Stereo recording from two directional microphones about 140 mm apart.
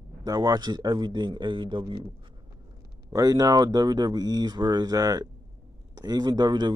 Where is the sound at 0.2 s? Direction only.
30° right (ahead or behind).